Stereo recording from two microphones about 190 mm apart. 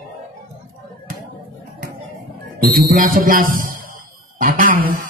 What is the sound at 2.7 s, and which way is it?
Speech, 45° right (ahead or behind).